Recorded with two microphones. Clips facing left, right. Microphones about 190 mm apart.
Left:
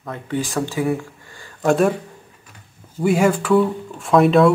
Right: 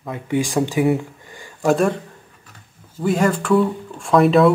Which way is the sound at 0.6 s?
20° right (ahead or behind).